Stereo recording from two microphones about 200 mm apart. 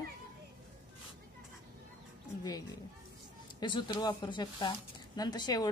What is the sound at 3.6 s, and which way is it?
Speech, 25° left (ahead or behind).